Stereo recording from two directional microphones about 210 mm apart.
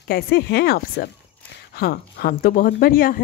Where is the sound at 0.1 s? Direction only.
50° left (ahead or behind).